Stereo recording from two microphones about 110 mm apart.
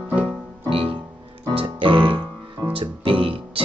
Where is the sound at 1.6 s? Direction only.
50° right (ahead or behind).